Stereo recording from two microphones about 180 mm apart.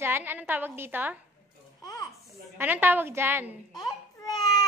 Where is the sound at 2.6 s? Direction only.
10° right (ahead or behind).